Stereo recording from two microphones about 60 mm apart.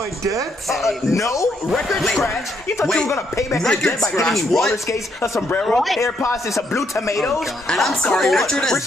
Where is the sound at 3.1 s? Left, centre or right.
Left.